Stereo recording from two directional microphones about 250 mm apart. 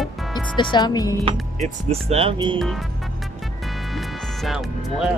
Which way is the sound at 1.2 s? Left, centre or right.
Right.